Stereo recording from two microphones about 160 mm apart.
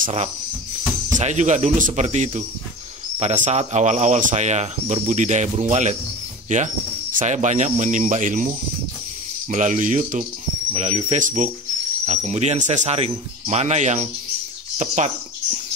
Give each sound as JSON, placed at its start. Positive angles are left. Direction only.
{"t": 0.0, "sound": "speech", "side_deg": -45}